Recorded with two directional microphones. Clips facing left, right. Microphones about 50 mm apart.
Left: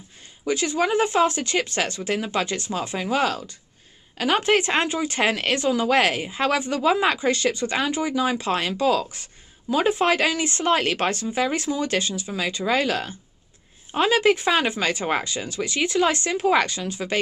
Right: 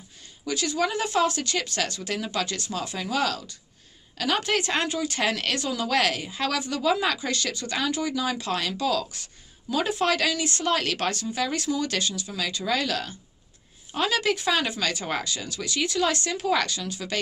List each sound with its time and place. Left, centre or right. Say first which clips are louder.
0.5 s speech: left 4 dB; left